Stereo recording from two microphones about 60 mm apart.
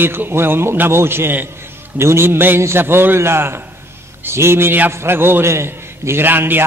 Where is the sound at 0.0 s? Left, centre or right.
Right.